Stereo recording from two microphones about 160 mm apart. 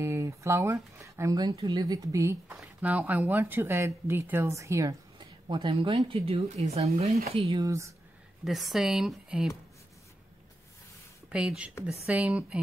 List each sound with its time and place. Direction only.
0.0 s speech: 20° right (ahead or behind); by 7.6 s 35° right (ahead or behind)
7.6 s speech: 20° right (ahead or behind)
8.5 s speech: centre (ahead or behind)
11.2 s speech: 5° right (ahead or behind)